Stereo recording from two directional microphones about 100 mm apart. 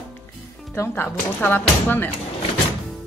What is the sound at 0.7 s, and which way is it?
Speech, 25° left (ahead or behind).